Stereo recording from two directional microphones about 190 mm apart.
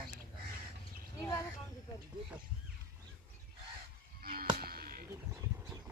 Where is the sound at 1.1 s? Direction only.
15° left (ahead or behind).